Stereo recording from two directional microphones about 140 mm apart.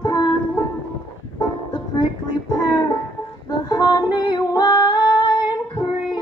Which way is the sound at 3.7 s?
30° left (ahead or behind).